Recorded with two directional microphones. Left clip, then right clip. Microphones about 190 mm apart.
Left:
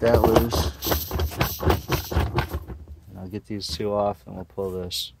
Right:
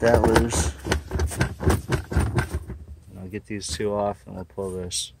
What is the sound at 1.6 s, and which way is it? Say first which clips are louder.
Clip-clop: left 2 dB; 30° left (ahead or behind).